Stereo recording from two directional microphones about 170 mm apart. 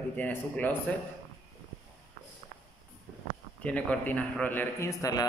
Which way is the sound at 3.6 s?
10° left (ahead or behind).